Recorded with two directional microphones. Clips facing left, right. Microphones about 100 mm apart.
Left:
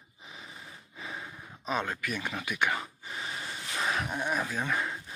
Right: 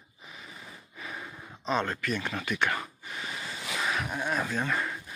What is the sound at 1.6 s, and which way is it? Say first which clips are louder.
Speech: right 3 dB; 10° left (ahead or behind).